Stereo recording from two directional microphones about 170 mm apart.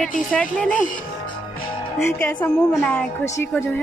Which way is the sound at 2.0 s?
15° left (ahead or behind).